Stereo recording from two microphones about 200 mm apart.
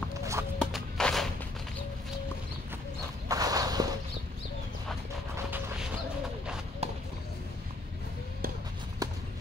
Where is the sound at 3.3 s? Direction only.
20° right (ahead or behind).